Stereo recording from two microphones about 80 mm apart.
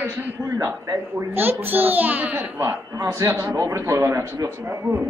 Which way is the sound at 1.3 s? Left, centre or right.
Right.